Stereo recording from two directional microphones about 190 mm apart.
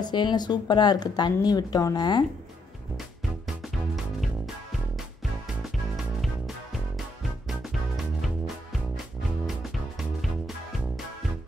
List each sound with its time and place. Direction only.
0.0 s speech: 25° left (ahead or behind)
3.4 s music: centre (ahead or behind)
5.9 s music: centre (ahead or behind)
9.6 s music: centre (ahead or behind)